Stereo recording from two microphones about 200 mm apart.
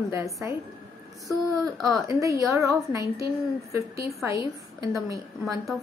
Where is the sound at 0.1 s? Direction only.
15° right (ahead or behind).